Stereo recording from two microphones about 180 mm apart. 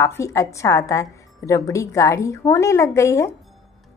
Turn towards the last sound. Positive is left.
turn(degrees=15)  # may be behind; listen again after turning